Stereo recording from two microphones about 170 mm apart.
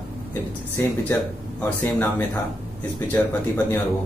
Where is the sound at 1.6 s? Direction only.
10° left (ahead or behind).